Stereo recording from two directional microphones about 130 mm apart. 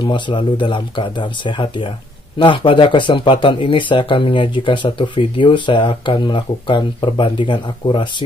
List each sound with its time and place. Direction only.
0.0 s speech: 40° left (ahead or behind)